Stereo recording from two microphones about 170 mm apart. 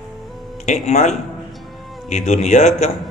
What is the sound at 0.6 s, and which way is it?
Speech, 45° left (ahead or behind).